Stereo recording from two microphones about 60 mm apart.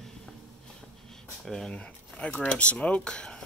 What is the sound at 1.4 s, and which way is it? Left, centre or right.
Speech, centre.